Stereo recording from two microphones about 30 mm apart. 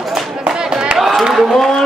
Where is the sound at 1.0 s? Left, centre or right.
Centre.